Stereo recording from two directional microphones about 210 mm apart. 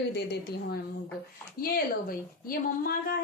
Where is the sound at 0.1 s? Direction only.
50° left (ahead or behind).